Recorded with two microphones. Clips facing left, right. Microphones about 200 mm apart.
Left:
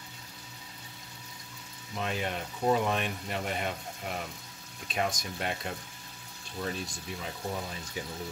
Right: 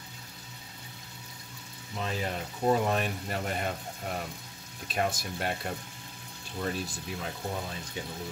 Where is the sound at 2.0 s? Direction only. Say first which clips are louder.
Even; centre (ahead or behind).